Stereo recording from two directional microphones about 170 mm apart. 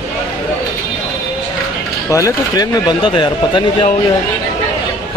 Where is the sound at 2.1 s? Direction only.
20° left (ahead or behind).